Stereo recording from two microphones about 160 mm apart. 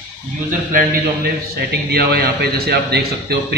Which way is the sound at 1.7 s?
90° right.